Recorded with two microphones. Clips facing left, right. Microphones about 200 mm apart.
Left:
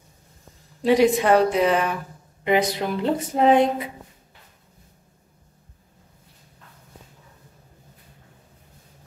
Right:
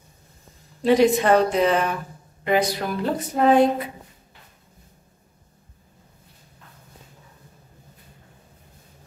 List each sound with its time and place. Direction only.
0.8 s a woman's voice: 10° left (ahead or behind)
2.4 s speech: 20° left (ahead or behind)